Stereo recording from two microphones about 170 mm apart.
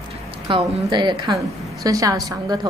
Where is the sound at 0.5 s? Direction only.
30° right (ahead or behind).